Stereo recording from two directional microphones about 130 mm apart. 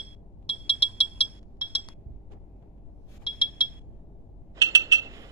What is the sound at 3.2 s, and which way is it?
Alarm, 40° left (ahead or behind).